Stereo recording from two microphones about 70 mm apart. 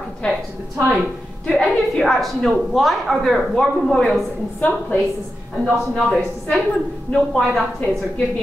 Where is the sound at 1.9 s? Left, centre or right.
Centre.